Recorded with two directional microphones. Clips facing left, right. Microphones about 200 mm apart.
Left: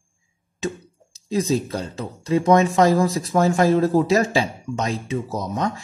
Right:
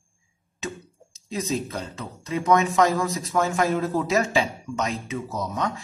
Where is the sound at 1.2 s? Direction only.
35° left (ahead or behind).